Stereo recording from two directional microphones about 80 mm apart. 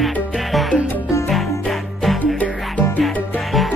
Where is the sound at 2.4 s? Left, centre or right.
Centre.